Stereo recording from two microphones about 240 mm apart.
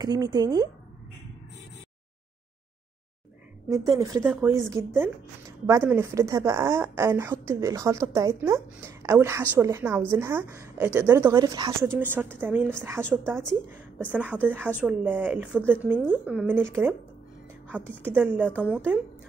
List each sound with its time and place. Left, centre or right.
0.0 s a woman's voice: centre
3.7 s a woman's voice: centre
4.2 s speech: centre
4.6 s a woman's voice: centre
18.4 s a woman's voice: centre